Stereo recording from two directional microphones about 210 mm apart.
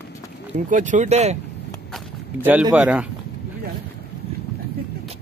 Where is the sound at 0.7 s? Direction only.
35° right (ahead or behind).